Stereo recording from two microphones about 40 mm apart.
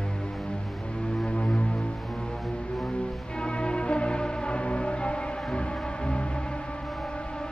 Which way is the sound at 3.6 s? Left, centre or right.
Left.